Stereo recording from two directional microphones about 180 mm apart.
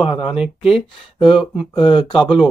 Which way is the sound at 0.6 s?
30° left (ahead or behind).